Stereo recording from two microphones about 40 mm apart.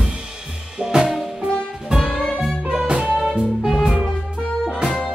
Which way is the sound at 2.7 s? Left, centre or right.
Right.